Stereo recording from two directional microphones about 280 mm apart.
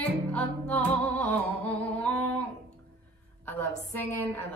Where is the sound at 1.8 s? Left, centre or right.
Centre.